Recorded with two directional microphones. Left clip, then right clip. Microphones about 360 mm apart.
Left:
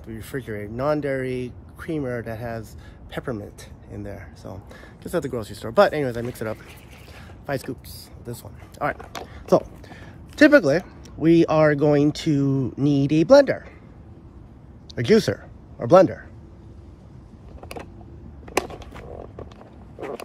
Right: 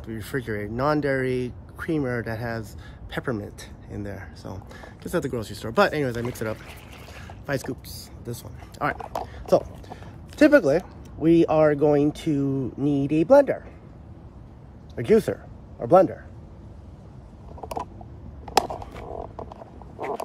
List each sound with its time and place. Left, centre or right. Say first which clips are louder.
0.0 s speech: right 2 dB; centre
7.2 s boat: even; centre
8.3 s speech: even; centre
9.1 s speech: left 2 dB; centre
15.0 s a man's voice: left 2 dB; centre